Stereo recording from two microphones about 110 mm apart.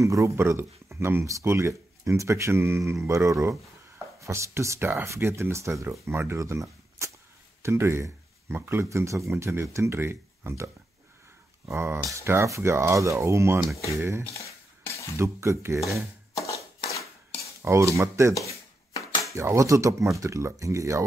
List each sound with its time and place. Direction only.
0.0 s speech: 30° right (ahead or behind)
11.6 s speech: 25° right (ahead or behind)
14.3 s a sound: 30° left (ahead or behind)
15.1 s speech: 25° right (ahead or behind)
17.6 s speech: 25° right (ahead or behind)
19.3 s speech: 25° right (ahead or behind)